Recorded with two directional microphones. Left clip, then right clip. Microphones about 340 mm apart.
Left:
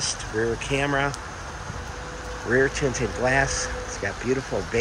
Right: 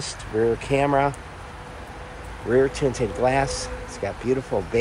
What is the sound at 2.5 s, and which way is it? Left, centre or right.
Speech, centre.